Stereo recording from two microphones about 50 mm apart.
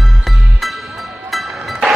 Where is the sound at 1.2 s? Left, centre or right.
Centre.